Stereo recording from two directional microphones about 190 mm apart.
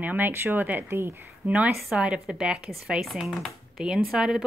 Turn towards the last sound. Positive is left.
turn(degrees=-5)  # may be behind; listen again after turning